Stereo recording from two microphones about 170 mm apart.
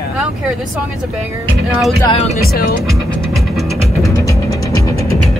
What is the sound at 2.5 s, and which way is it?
Speech, 60° left (ahead or behind).